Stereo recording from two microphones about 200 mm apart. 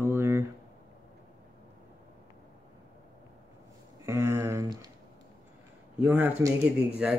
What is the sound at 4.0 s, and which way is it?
Speech, 15° right (ahead or behind).